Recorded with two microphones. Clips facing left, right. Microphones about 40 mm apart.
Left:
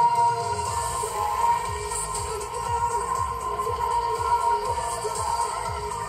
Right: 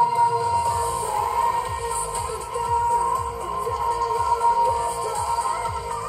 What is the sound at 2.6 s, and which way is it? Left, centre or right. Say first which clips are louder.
Music: right 5 dB; centre.